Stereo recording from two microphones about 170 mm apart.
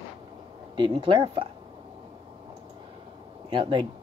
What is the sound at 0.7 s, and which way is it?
Speech, 30° right (ahead or behind).